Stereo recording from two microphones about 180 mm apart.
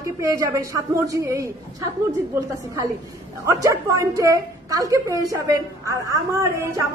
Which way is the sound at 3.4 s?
15° right (ahead or behind).